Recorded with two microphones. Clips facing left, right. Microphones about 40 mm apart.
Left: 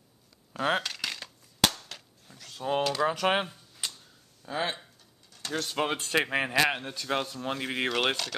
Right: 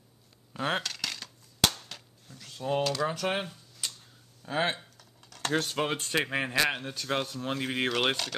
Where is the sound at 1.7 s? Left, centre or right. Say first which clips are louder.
Even; centre.